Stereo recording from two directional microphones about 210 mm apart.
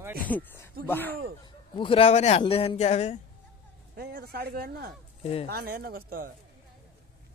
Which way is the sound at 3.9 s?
50° right (ahead or behind).